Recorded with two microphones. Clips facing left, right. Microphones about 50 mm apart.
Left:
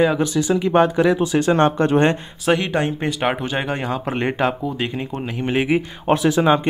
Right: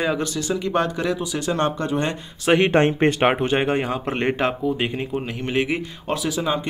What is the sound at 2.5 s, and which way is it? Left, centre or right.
Speech, right.